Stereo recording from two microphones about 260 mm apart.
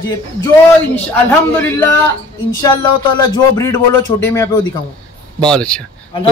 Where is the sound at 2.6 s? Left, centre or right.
Centre.